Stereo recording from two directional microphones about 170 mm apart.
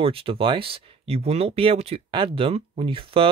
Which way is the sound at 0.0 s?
35° right (ahead or behind).